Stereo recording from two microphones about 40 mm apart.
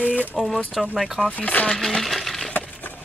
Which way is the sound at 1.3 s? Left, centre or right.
Left.